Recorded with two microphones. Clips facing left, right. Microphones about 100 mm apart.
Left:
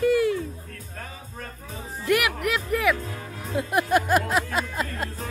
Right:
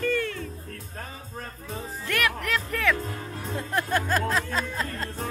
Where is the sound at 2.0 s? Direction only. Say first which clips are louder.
Left 5 dB; 10° left (ahead or behind).